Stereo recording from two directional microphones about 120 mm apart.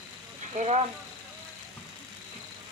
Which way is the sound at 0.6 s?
65° right (ahead or behind).